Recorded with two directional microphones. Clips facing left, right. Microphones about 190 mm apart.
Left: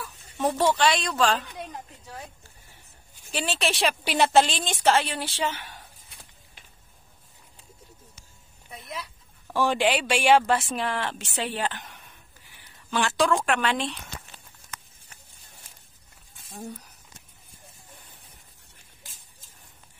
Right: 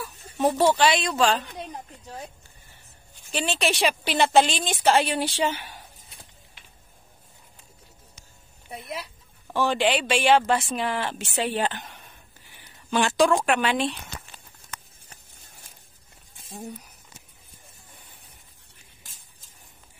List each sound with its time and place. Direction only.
0.7 s speech: 5° right (ahead or behind)
3.3 s speech: 5° left (ahead or behind)
4.8 s speech: 15° right (ahead or behind)
8.6 s a sound: 30° right (ahead or behind)
9.5 s speech: 10° left (ahead or behind); by 11.8 s 20° right (ahead or behind)
12.9 s speech: 15° right (ahead or behind)